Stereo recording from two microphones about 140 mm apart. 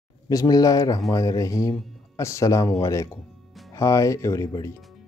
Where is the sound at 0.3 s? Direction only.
25° left (ahead or behind).